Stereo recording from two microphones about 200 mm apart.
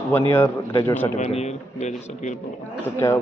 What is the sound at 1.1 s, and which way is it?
A man's voice, 35° left (ahead or behind).